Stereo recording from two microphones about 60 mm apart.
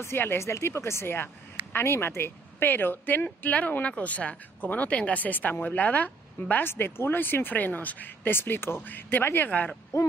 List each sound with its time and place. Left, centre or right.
0.0 s speech: left
6.5 s speech: left
9.5 s speech: left